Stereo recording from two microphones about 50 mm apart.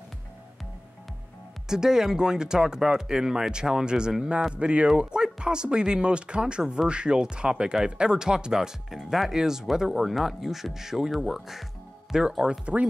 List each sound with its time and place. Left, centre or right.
1.7 s speech: centre
4.6 s speech: right